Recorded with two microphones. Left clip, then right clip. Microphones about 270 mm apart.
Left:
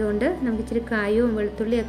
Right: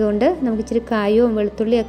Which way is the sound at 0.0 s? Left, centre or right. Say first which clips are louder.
Right 6 dB; centre.